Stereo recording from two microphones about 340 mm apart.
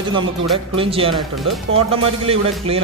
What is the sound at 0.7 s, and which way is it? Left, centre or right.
A man's voice, centre.